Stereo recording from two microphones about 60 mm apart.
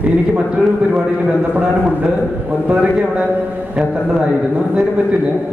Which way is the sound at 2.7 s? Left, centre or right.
Right.